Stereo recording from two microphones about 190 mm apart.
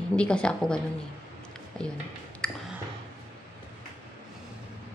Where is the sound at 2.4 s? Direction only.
5° left (ahead or behind).